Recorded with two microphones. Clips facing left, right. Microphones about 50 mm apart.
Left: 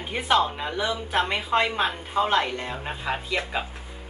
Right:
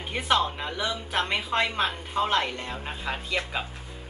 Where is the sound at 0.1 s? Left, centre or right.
Centre.